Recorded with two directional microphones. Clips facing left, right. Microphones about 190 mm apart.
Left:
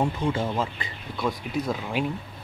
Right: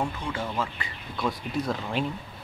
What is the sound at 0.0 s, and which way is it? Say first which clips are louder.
Speech: left 5 dB; 25° left (ahead or behind).